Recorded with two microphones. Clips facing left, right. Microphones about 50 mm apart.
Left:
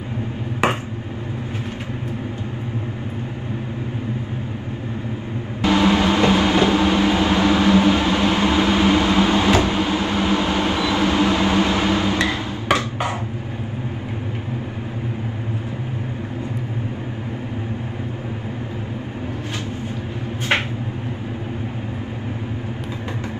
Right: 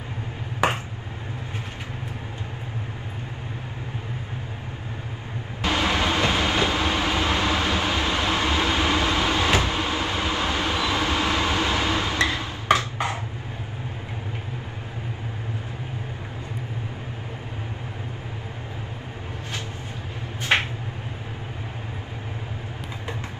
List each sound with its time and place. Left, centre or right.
5.6 s vehicle: left